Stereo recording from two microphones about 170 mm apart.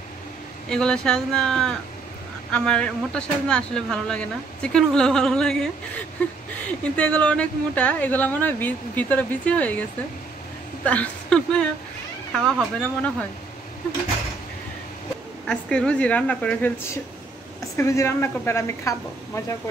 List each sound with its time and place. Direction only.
0.7 s speech: 5° left (ahead or behind)
10.9 s speech: 5° left (ahead or behind)
15.4 s speech: 5° left (ahead or behind)